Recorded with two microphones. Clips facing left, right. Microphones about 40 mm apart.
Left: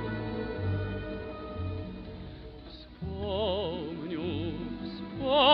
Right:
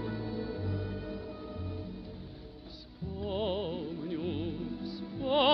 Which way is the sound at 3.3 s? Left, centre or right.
Left.